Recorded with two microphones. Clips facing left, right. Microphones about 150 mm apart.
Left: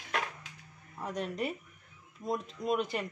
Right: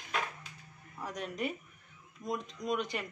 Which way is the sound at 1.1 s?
Centre (ahead or behind).